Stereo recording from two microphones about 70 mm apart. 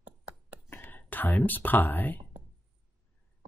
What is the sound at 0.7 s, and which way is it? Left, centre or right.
Speech, left.